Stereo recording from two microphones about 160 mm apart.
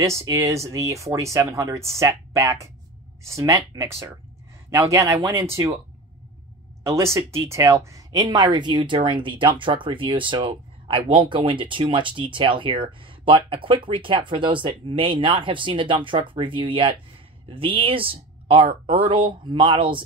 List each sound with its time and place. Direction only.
0.0 s speech: 20° right (ahead or behind)
7.2 s speech: 15° right (ahead or behind); by 20.0 s 30° right (ahead or behind)